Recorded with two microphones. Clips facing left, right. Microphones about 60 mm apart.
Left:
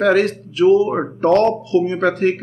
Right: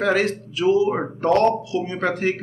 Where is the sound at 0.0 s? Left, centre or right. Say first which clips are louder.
Left 5 dB; left.